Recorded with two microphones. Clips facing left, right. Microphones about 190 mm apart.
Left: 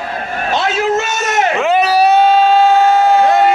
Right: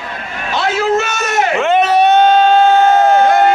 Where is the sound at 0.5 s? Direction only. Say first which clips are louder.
Right 1 dB; 20° left (ahead or behind).